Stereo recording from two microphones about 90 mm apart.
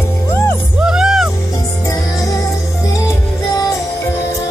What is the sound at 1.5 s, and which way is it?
Music, 35° left (ahead or behind).